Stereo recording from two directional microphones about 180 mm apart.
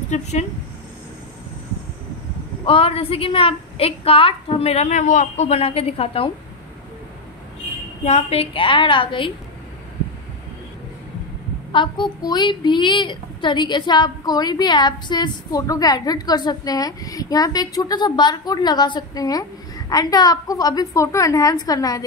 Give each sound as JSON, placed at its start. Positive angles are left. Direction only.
{"t": 0.1, "sound": "a woman's voice", "side_deg": 40}
{"t": 2.6, "sound": "a woman's voice", "side_deg": 30}
{"t": 8.0, "sound": "a woman's voice", "side_deg": 35}
{"t": 11.7, "sound": "a woman's voice", "side_deg": 25}